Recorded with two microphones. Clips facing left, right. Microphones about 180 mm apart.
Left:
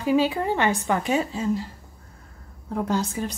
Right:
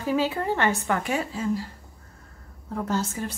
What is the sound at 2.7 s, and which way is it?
Speech, 15° left (ahead or behind).